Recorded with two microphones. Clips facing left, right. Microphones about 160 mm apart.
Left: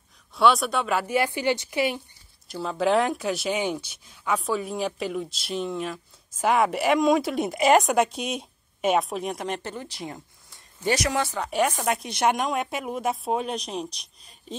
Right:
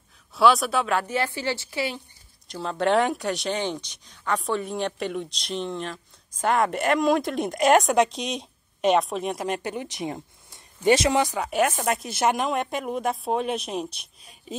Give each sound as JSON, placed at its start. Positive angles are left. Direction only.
{"t": 0.4, "sound": "speech", "side_deg": 0}
{"t": 2.4, "sound": "speech", "side_deg": 5}
{"t": 9.6, "sound": "speech", "side_deg": -15}